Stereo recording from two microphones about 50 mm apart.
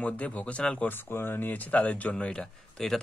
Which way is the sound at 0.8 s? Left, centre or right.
Left.